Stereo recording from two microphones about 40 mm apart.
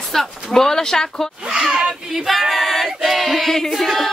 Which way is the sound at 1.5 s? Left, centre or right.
Right.